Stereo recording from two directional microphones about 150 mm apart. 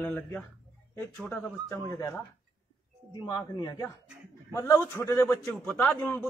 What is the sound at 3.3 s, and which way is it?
A man's voice, 25° left (ahead or behind).